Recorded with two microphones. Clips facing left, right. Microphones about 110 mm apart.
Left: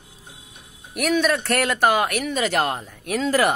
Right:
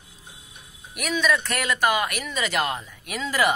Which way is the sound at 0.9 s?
55° left (ahead or behind).